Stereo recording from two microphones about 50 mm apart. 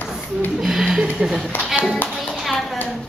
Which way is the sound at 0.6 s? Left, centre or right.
Centre.